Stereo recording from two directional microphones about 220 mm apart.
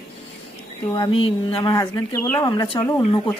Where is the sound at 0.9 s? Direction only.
25° left (ahead or behind).